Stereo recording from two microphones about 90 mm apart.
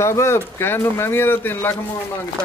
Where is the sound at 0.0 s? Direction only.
30° left (ahead or behind).